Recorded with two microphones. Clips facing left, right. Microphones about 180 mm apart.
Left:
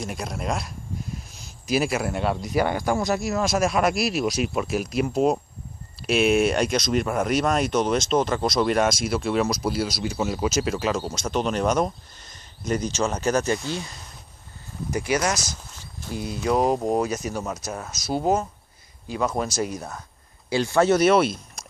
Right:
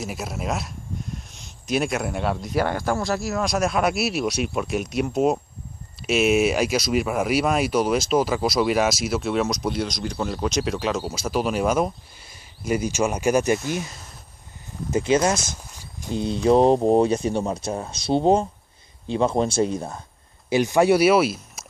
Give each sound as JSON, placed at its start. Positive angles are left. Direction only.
{"t": 0.0, "sound": "speech", "side_deg": -5}
{"t": 15.8, "sound": "a sound", "side_deg": -20}
{"t": 16.4, "sound": "speech", "side_deg": -30}
{"t": 20.4, "sound": "speech", "side_deg": -15}